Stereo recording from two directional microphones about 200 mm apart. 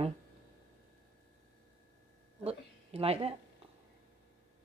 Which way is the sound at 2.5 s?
30° right (ahead or behind).